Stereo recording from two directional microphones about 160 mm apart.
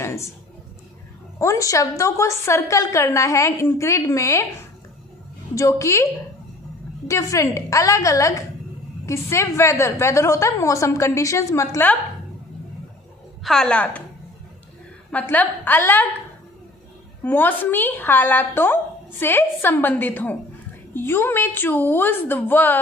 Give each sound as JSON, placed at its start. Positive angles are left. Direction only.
{"t": 0.0, "sound": "a sound", "side_deg": 15}
{"t": 1.4, "sound": "a woman's voice", "side_deg": 20}
{"t": 7.1, "sound": "a woman's voice", "side_deg": 20}
{"t": 13.4, "sound": "a woman's voice", "side_deg": 5}
{"t": 15.0, "sound": "a woman's voice", "side_deg": 10}
{"t": 17.2, "sound": "a woman's voice", "side_deg": 10}